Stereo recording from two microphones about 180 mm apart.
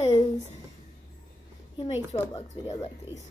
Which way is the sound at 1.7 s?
25° left (ahead or behind).